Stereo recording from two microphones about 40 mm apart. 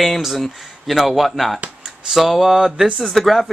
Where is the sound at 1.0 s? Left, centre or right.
Centre.